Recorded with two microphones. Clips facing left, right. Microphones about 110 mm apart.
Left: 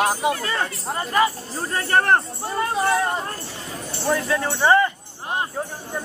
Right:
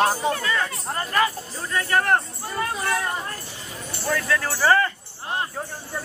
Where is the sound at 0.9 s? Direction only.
15° left (ahead or behind).